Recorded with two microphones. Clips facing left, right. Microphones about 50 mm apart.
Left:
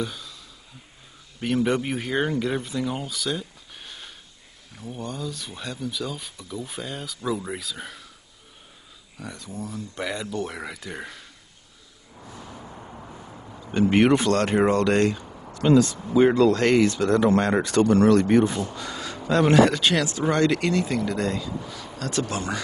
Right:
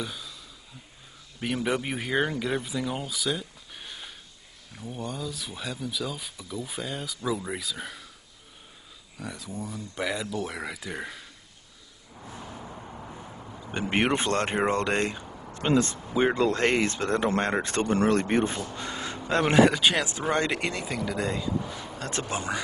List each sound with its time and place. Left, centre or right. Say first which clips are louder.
0.0 s speech: left 4 dB; centre
1.4 s speech: left 5 dB; centre
9.2 s speech: left 1 dB; centre
12.4 s vehicle: even; centre
13.7 s speech: left 7 dB; centre
15.2 s a sound: left 1 dB; centre
15.5 s speech: left 6 dB; right
16.1 s speech: left 7 dB; centre
16.3 s speech: left 5 dB; right
20.8 s speech: left 4 dB; centre
21.4 s speech: right 2 dB; right
22.2 s speech: left 1 dB; centre